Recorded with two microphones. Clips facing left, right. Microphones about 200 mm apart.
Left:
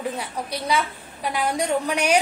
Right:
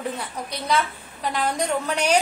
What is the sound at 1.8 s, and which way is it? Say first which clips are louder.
Speech: right 1 dB; 10° left (ahead or behind).